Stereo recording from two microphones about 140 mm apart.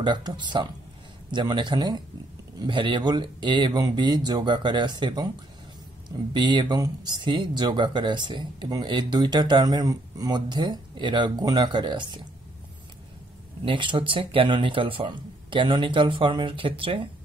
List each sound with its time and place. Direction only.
0.0 s speech: 30° right (ahead or behind)
6.3 s speech: 35° right (ahead or behind)
13.7 s speech: 35° right (ahead or behind)